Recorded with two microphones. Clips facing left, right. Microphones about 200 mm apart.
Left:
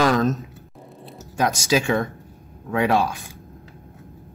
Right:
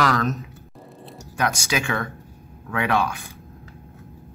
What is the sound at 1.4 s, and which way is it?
Speech, 25° left (ahead or behind).